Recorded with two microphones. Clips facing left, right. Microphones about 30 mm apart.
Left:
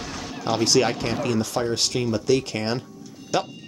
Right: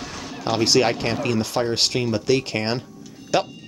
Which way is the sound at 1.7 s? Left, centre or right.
Right.